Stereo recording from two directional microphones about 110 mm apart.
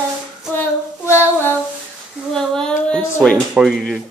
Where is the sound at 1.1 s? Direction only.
20° left (ahead or behind).